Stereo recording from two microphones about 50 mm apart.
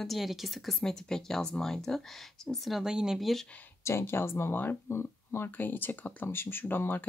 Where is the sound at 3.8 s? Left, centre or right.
Left.